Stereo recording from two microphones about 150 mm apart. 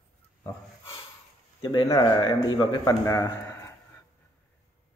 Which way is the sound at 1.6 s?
25° left (ahead or behind).